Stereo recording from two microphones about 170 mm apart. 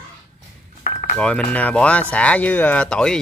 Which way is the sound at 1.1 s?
5° left (ahead or behind).